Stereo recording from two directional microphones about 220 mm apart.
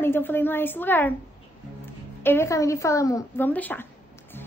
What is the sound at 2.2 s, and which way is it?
A child's voice, 10° left (ahead or behind).